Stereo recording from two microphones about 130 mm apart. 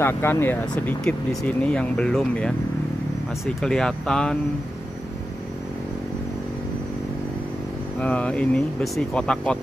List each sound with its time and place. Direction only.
0.0 s speech: 15° left (ahead or behind)
3.6 s speech: 5° left (ahead or behind)
8.0 s speech: 10° left (ahead or behind)